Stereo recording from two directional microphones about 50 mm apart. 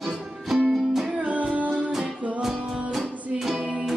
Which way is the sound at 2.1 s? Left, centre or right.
Right.